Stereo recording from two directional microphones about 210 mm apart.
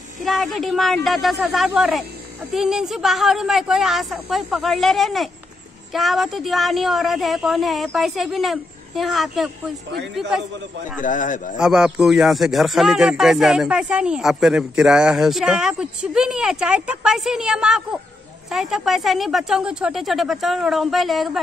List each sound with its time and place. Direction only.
0.2 s speech: centre (ahead or behind)
11.0 s a man's voice: 40° left (ahead or behind)
11.5 s speech: centre (ahead or behind)